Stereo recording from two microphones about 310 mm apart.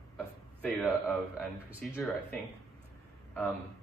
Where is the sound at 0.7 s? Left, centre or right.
Centre.